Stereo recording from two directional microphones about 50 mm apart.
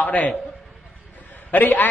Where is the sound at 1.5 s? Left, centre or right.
Left.